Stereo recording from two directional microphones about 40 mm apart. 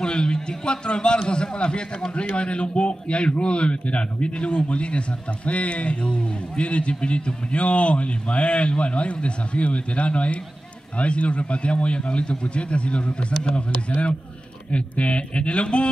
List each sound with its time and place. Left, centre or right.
0.0 s a man's voice: left